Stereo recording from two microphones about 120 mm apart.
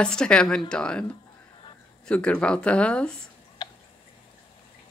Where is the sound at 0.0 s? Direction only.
5° left (ahead or behind).